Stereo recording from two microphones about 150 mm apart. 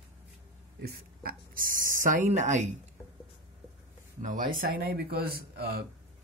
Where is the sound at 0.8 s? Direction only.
85° right; by 2.7 s 50° right (ahead or behind).